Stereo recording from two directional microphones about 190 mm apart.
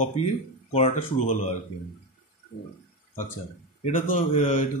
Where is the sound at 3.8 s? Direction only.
45° left (ahead or behind).